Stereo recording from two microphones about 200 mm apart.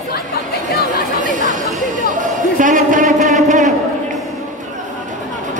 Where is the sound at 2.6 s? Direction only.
40° right (ahead or behind).